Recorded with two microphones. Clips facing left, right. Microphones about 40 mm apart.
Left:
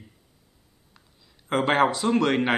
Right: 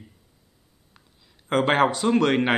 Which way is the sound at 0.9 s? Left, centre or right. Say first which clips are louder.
Right 1 dB; centre.